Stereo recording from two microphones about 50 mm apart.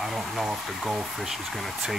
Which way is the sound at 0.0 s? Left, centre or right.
Centre.